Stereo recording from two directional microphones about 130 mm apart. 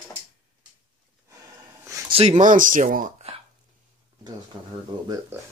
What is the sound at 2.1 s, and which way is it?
Speech, 45° right (ahead or behind).